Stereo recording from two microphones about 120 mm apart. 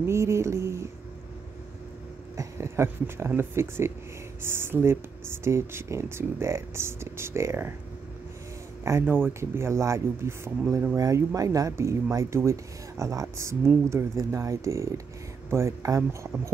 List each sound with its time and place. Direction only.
0.0 s a sound: 25° right (ahead or behind)
2.3 s speech: 25° right (ahead or behind)
8.8 s speech: 20° right (ahead or behind)